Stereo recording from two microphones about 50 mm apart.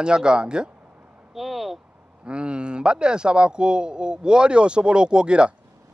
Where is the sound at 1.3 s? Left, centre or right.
Centre.